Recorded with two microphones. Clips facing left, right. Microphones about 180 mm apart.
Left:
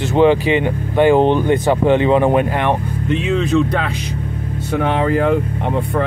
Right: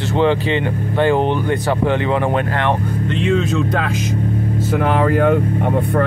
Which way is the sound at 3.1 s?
Centre (ahead or behind).